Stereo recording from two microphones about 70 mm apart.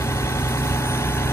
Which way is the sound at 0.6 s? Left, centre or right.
Left.